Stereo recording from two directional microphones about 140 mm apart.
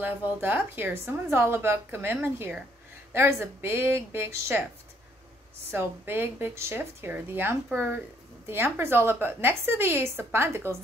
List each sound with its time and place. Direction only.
0.0 s a woman's voice: 10° right (ahead or behind)
5.7 s a woman's voice: 15° right (ahead or behind)